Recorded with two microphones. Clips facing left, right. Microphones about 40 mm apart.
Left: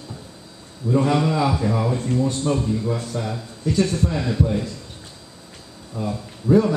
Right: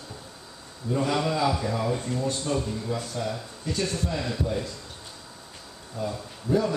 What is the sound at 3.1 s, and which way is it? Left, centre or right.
A man's voice, centre.